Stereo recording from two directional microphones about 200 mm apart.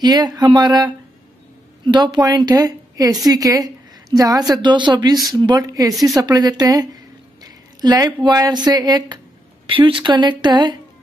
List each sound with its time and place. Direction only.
0.0 s a woman's voice: 20° right (ahead or behind)